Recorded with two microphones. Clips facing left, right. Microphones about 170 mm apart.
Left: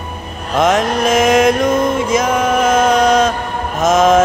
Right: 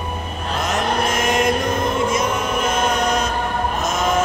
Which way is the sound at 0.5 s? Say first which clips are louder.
Left 8 dB; 90° left.